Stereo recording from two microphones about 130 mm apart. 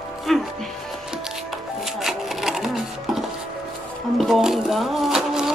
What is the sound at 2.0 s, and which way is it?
Sewing machine, 5° right (ahead or behind).